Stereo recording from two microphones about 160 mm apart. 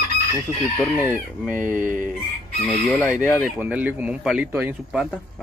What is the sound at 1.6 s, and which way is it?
Speech, 55° right (ahead or behind).